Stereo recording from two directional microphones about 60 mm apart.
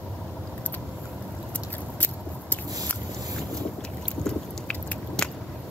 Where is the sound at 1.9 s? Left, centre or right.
Left.